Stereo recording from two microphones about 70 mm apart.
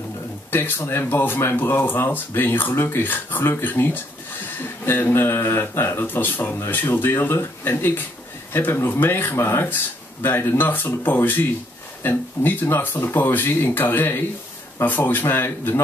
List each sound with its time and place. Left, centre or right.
0.5 s speech: left